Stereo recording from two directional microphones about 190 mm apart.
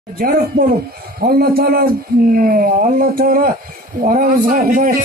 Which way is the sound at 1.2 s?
55° right (ahead or behind).